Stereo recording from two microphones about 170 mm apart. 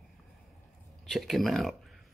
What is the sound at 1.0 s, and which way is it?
Speech, centre (ahead or behind).